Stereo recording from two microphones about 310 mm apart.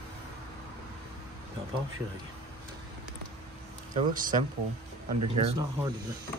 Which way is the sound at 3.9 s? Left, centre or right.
Right.